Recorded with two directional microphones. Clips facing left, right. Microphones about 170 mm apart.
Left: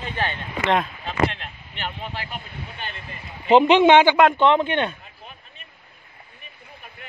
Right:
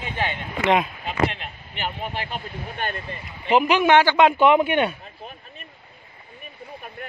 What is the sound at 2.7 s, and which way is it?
Speech, 50° right (ahead or behind).